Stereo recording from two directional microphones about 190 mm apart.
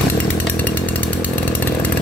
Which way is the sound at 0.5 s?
10° left (ahead or behind).